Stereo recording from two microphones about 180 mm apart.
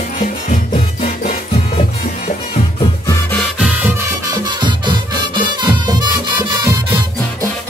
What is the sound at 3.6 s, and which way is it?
Music, 10° right (ahead or behind).